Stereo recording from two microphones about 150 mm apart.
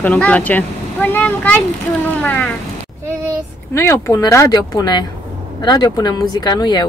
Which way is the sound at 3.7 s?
20° left (ahead or behind).